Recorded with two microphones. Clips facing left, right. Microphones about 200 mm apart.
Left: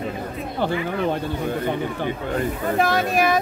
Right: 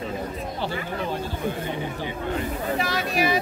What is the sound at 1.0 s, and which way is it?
Speech, 55° left (ahead or behind).